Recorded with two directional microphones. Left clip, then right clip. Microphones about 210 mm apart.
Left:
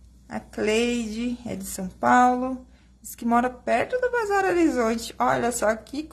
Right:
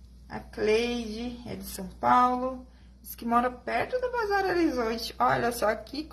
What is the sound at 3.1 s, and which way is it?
Speech, 25° left (ahead or behind).